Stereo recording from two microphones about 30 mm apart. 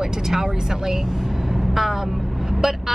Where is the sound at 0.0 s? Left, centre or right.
Centre.